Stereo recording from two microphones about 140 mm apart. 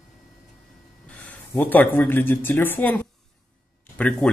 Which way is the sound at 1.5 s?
15° left (ahead or behind).